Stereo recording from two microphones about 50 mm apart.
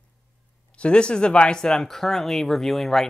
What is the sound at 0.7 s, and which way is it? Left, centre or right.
Speech, left.